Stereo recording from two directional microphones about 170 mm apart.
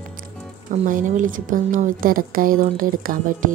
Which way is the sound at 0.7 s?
50° right (ahead or behind).